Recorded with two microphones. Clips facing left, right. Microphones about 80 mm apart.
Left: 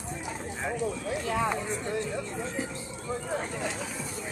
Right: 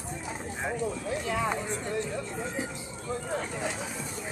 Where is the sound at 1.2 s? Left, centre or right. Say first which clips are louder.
Left 2 dB; left.